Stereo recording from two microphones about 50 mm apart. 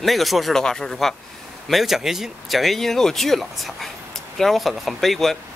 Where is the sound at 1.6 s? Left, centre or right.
Centre.